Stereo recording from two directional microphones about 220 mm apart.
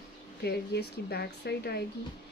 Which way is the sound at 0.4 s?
45° left (ahead or behind).